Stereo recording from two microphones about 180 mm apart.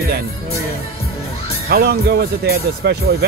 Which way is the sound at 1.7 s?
60° right (ahead or behind).